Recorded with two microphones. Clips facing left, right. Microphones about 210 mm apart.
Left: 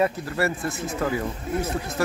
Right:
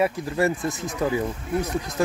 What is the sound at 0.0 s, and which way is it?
Speech, 15° right (ahead or behind).